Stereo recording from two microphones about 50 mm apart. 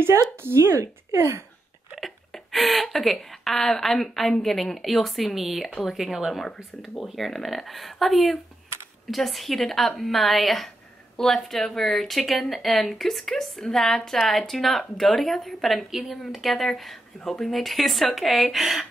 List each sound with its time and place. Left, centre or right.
0.4 s speech: right
2.0 s speech: centre